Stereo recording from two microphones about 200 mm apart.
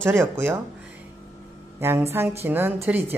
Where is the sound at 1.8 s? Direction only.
10° right (ahead or behind).